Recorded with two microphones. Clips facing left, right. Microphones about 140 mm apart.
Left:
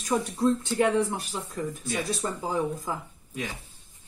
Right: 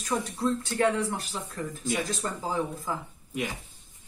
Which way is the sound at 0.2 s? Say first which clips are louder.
Left 4 dB; 20° left (ahead or behind).